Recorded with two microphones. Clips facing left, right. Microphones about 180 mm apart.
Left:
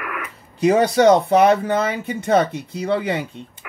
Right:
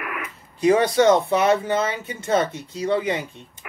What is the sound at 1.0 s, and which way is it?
A woman's voice, 60° left (ahead or behind).